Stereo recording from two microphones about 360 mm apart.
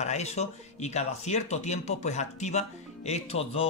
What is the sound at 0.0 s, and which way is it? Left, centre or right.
Speech, centre.